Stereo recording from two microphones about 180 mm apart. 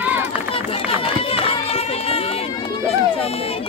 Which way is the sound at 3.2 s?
30° left (ahead or behind).